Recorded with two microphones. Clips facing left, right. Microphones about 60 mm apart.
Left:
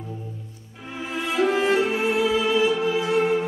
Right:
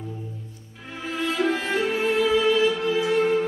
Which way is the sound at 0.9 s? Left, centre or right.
Centre.